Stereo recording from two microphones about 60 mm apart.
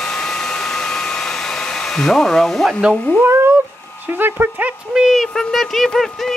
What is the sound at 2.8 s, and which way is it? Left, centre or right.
Speech, centre.